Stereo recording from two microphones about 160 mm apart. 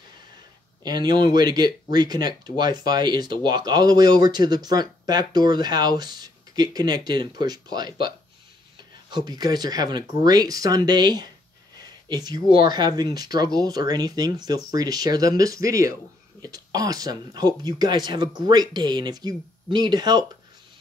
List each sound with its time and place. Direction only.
0.8 s speech: 25° right (ahead or behind)
9.1 s speech: 25° right (ahead or behind)